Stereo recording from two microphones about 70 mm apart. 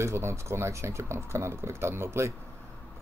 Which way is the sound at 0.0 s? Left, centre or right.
Right.